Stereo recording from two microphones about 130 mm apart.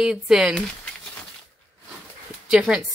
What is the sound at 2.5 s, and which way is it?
Speech, 5° right (ahead or behind).